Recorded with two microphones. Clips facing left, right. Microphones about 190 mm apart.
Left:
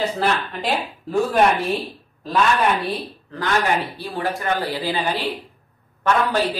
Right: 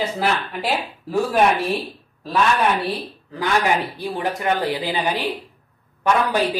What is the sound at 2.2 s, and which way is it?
Speech, centre (ahead or behind).